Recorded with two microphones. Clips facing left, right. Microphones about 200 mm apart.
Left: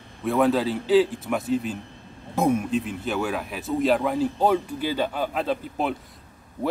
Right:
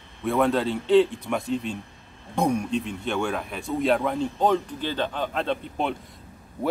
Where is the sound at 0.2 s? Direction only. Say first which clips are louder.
Left 1 dB; centre (ahead or behind).